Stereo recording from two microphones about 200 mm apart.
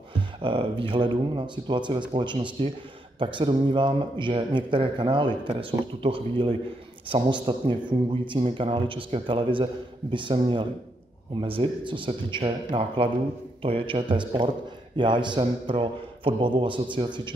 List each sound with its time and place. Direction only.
0.4 s a man's voice: 25° right (ahead or behind)